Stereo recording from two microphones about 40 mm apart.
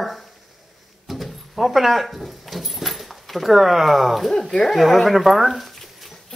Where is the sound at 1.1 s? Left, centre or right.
Centre.